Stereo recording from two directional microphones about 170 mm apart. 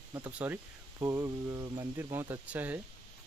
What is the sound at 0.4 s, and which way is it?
Speech, 10° right (ahead or behind).